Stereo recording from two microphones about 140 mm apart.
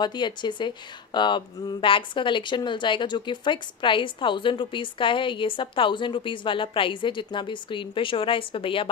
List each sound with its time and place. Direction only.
0.0 s speech: 30° left (ahead or behind)